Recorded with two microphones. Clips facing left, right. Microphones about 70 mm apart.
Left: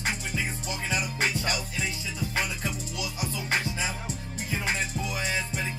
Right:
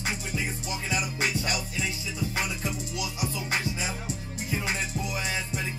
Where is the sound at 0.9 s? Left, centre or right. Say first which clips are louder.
Even; left.